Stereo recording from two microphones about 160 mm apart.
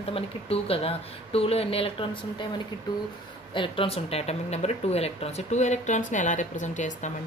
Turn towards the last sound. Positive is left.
turn(degrees=50)  # may be behind; listen again after turning